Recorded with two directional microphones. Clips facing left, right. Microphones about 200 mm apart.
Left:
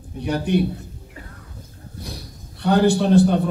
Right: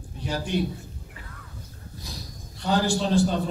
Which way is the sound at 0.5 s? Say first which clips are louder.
Left 7 dB; 60° left (ahead or behind).